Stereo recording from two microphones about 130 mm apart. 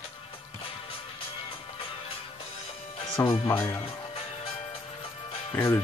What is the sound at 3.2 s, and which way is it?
Speech, 25° left (ahead or behind).